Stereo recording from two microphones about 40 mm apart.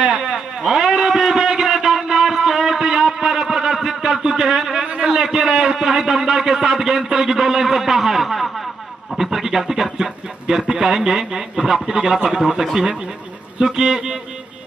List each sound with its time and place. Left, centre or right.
0.6 s a sound: centre
5.5 s a man's voice: right
5.8 s a man's voice: centre
13.7 s a man's voice: centre